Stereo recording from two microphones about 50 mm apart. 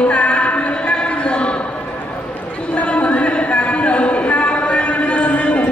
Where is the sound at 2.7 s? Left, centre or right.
Left.